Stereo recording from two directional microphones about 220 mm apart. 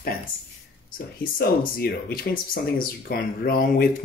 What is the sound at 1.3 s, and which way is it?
Speech, 45° left (ahead or behind).